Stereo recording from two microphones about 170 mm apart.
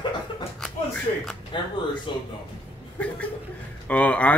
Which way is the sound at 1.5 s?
30° left (ahead or behind).